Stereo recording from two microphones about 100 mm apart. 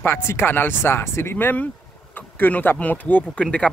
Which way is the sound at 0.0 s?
25° left (ahead or behind).